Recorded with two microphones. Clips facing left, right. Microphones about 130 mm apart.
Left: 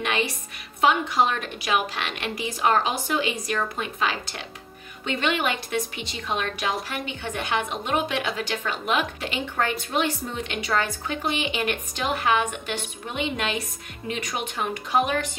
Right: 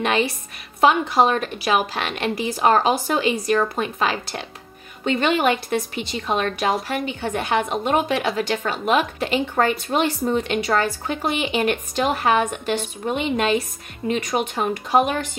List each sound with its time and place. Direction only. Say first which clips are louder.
0.8 s a woman's voice: right 4 dB; 35° right (ahead or behind)